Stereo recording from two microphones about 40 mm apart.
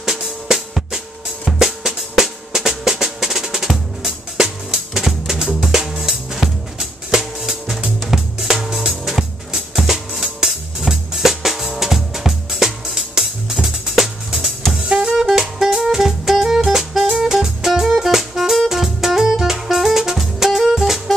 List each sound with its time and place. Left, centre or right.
0.0 s music: centre
8.1 s drum kit: centre
8.7 s music: centre
15.0 s jazz: centre
15.6 s music: centre